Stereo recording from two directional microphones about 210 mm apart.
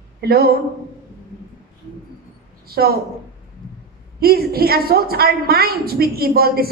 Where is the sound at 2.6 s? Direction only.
45° right (ahead or behind).